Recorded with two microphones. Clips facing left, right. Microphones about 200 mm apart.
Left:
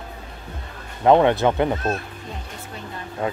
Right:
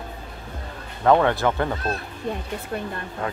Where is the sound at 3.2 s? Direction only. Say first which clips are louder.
Left 4 dB; 20° left (ahead or behind).